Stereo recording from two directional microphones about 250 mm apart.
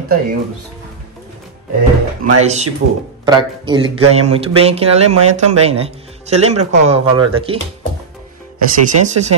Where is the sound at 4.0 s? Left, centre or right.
Right.